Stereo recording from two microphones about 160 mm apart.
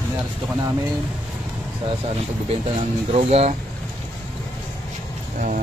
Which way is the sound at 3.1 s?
40° right (ahead or behind).